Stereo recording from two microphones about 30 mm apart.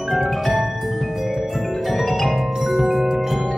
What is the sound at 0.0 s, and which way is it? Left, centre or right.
Music, centre.